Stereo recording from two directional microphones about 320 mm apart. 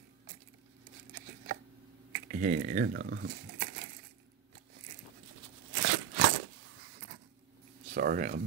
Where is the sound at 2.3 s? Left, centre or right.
Right.